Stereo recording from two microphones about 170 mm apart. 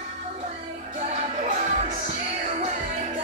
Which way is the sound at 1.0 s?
45° right (ahead or behind).